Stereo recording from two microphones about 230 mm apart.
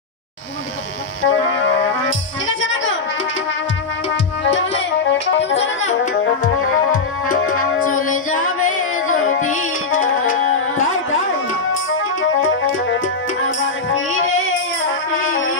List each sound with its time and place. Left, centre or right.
1.2 s music: left
4.5 s music: left
6.4 s music: left
7.3 s music: left
7.8 s music: left
9.0 s music: left
11.7 s music: left